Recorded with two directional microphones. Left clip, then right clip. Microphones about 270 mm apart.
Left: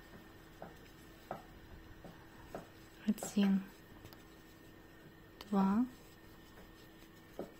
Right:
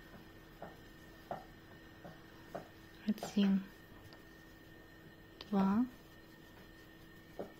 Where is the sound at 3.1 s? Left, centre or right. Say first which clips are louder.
Even; centre.